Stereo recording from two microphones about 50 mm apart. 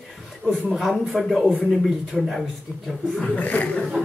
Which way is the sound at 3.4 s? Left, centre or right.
Left.